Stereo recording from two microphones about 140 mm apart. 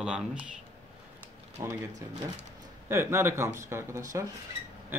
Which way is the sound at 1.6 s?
20° right (ahead or behind).